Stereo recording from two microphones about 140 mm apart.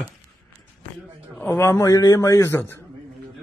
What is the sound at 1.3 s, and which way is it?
A man's voice, 10° left (ahead or behind).